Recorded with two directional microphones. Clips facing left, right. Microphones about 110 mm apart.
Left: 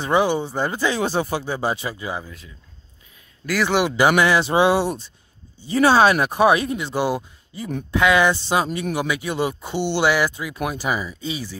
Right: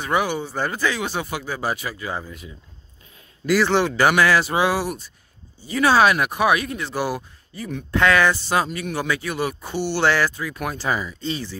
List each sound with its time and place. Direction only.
0.0 s speech: 25° left (ahead or behind)
1.0 s speech: 35° left (ahead or behind)
2.2 s speech: 5° right (ahead or behind)
3.6 s speech: 10° left (ahead or behind)